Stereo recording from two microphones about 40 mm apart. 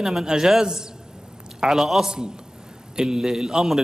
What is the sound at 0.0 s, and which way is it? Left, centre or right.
A man's voice, centre.